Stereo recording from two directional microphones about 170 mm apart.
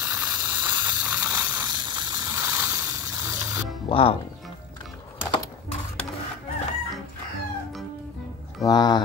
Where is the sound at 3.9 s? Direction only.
35° left (ahead or behind).